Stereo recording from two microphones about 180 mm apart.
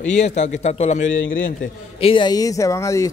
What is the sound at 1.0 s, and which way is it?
Speech, 90° left.